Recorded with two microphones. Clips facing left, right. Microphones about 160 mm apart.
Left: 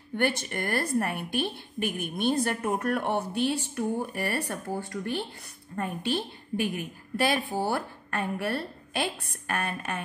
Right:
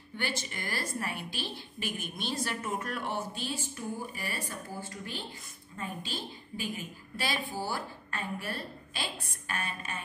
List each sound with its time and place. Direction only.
0.1 s a woman's voice: 60° left (ahead or behind)